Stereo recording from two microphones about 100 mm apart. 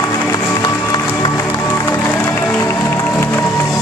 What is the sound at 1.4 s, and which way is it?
Music, 25° left (ahead or behind).